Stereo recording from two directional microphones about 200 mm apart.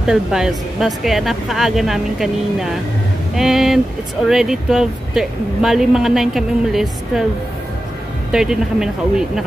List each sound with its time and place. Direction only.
0.0 s speech: centre (ahead or behind)
8.3 s speech: 5° right (ahead or behind)